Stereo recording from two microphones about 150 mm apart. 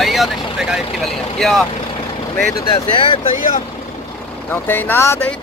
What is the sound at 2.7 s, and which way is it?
Speech, 35° left (ahead or behind).